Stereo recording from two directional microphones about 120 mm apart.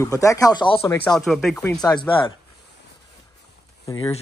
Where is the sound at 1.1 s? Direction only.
Centre (ahead or behind).